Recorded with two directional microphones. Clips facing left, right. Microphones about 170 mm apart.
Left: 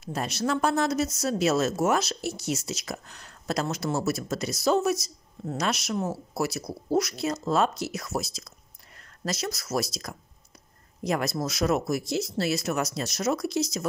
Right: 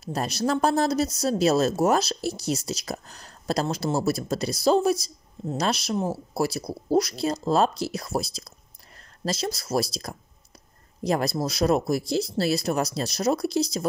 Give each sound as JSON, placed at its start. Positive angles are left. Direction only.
{"t": 0.0, "sound": "speech", "side_deg": -35}